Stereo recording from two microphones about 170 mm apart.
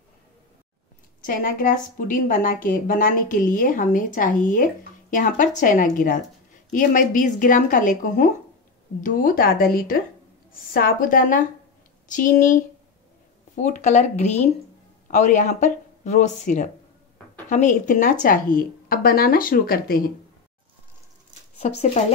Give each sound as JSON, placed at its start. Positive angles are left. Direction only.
{"t": 1.2, "sound": "a woman's voice", "side_deg": 55}
{"t": 21.5, "sound": "speech", "side_deg": 40}